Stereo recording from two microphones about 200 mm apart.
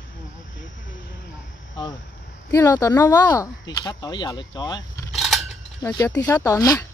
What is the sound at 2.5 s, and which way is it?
Speech, 15° left (ahead or behind).